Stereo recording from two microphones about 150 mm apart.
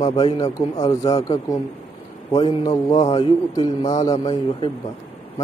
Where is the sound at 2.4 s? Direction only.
40° left (ahead or behind).